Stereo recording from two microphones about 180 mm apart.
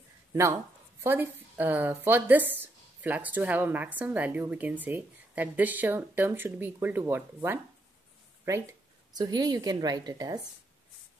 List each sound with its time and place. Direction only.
0.3 s a woman's voice: 15° right (ahead or behind)
9.1 s a woman's voice: 20° right (ahead or behind)